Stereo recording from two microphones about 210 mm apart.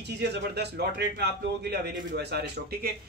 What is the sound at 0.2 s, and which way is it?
A man's voice, 50° right (ahead or behind).